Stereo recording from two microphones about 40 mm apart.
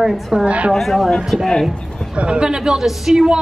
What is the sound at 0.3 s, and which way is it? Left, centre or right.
Female singing, right.